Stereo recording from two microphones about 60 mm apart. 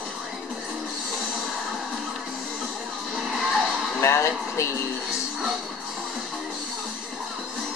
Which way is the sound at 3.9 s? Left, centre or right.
Left.